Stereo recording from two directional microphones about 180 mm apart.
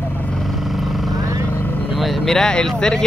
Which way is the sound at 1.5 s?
10° left (ahead or behind).